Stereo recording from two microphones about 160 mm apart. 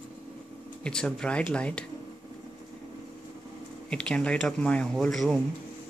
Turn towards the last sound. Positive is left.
turn(degrees=5)  # may be behind; listen again after turning